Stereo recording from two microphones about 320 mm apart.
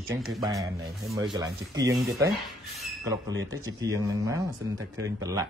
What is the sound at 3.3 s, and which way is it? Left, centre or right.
Speech, right.